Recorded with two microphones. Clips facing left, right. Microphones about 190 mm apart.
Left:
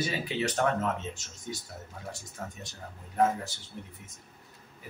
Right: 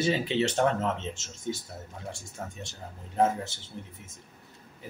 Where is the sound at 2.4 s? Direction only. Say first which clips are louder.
Right 1 dB; 25° right (ahead or behind).